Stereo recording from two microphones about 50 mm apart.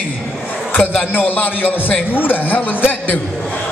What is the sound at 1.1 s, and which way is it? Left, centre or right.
Music, left.